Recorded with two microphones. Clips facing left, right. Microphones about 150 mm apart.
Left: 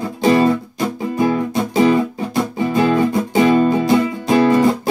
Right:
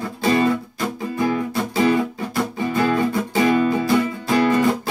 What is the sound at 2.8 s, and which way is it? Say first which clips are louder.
Music: left 4 dB; 20° left (ahead or behind).